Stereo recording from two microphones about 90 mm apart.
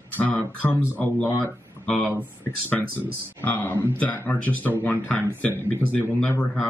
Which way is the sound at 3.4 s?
20° left (ahead or behind).